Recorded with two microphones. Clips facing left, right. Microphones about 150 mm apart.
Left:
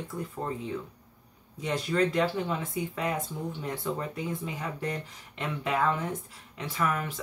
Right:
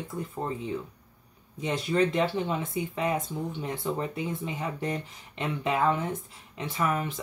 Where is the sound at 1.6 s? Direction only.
20° right (ahead or behind).